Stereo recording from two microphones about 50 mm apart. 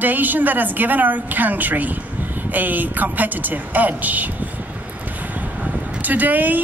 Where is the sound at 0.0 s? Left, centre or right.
Right.